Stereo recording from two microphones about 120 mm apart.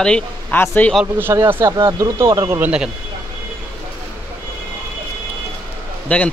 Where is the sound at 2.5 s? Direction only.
10° right (ahead or behind).